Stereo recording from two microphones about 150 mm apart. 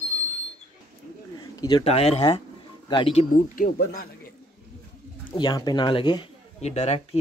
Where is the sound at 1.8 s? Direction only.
45° left (ahead or behind).